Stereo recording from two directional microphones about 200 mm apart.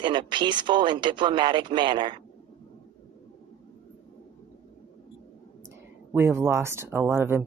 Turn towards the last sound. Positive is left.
turn(degrees=-10)  # may be behind; listen again after turning